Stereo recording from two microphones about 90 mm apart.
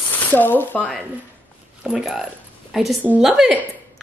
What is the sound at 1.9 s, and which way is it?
Speech, 5° right (ahead or behind).